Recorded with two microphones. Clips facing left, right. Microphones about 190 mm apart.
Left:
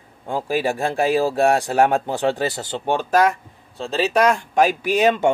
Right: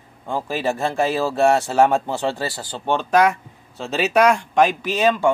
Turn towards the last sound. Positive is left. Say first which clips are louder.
# left 1 dB
turn(degrees=20)  # may be behind; listen again after turning